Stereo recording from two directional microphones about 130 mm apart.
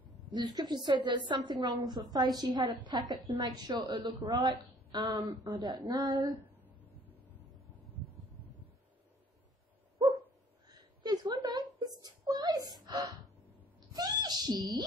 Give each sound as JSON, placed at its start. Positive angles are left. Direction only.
{"t": 0.3, "sound": "a woman's voice", "side_deg": -35}
{"t": 10.0, "sound": "dog", "side_deg": -35}
{"t": 10.7, "sound": "a sound", "side_deg": -35}
{"t": 13.7, "sound": "screaming", "side_deg": -30}